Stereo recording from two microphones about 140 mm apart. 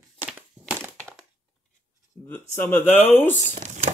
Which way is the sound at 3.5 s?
60° right (ahead or behind).